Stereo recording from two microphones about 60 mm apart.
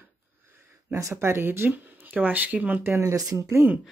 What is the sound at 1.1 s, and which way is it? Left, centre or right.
Speech, right.